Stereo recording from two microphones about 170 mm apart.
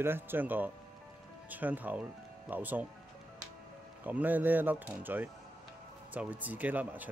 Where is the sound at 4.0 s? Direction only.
10° right (ahead or behind).